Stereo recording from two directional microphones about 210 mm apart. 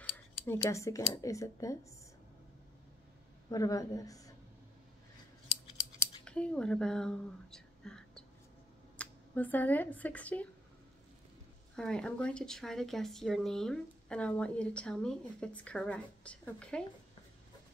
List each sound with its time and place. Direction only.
0.1 s speech: 15° left (ahead or behind)
3.4 s a woman's voice: 15° left (ahead or behind)
6.2 s a sound: 5° left (ahead or behind)
8.9 s speech: 5° left (ahead or behind)
11.7 s speech: 5° left (ahead or behind)